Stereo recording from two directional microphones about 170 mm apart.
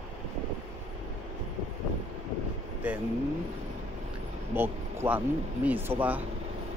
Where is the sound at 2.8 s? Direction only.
10° right (ahead or behind).